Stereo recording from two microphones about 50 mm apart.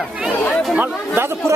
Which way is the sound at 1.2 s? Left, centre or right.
Right.